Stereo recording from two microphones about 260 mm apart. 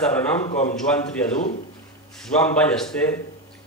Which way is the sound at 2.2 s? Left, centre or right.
Centre.